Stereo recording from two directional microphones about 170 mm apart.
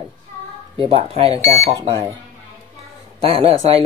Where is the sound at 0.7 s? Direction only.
35° right (ahead or behind).